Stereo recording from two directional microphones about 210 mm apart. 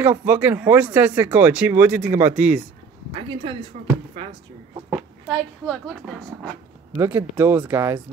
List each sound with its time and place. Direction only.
0.0 s speech: 15° right (ahead or behind)
3.2 s speech: 25° right (ahead or behind)
4.8 s speech: centre (ahead or behind)
7.0 s speech: 10° right (ahead or behind)